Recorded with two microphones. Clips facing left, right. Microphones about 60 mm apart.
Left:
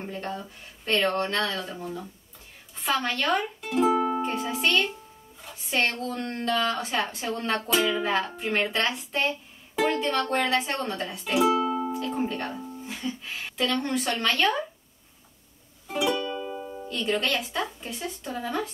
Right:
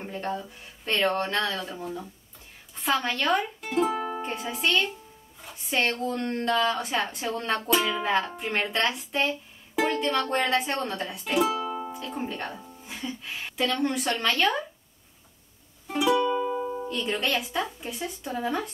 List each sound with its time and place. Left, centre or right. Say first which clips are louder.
0.0 s speech: right 2 dB; centre
11.3 s speech: left 3 dB; left
11.9 s speech: left 5 dB; centre
15.9 s music: right 4 dB; centre
16.3 s music: right 6 dB; centre
16.9 s speech: left 3 dB; centre